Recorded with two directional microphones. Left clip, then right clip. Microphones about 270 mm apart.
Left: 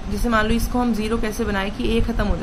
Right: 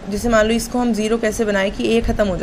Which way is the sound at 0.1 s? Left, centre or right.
Centre.